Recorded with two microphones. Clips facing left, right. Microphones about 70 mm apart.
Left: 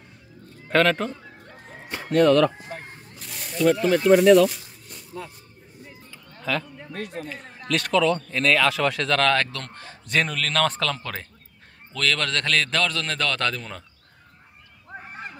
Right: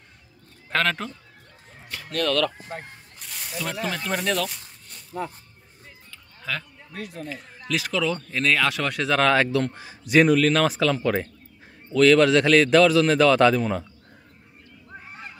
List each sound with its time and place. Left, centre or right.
0.7 s a man's voice: centre
1.9 s speech: left
3.2 s speech: centre
6.4 s speech: centre